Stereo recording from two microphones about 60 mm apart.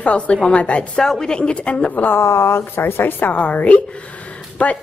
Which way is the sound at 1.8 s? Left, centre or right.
Left.